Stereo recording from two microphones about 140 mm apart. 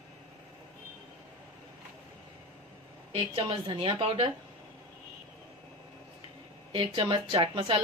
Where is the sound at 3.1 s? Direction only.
40° right (ahead or behind).